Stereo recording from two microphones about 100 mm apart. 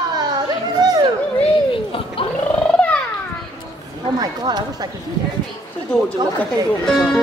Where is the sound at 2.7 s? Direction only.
15° left (ahead or behind).